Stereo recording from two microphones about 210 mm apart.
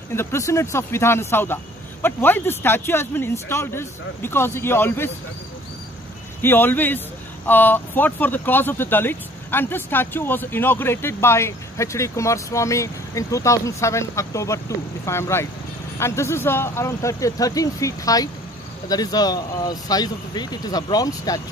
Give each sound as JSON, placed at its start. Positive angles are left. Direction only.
{"t": 0.1, "sound": "speech", "side_deg": 10}
{"t": 6.4, "sound": "speech", "side_deg": 10}